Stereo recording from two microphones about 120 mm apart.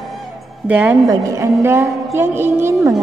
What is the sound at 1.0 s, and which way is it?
A woman's voice, 25° right (ahead or behind).